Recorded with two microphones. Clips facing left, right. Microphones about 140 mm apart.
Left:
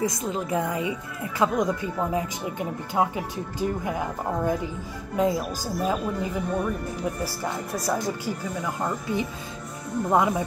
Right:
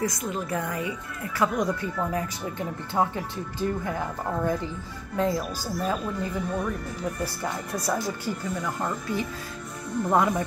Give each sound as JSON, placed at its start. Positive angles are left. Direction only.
{"t": 0.0, "sound": "a woman's voice", "side_deg": 20}
{"t": 10.0, "sound": "speech", "side_deg": 10}